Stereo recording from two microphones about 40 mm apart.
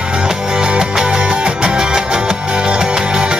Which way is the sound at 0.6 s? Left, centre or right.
Right.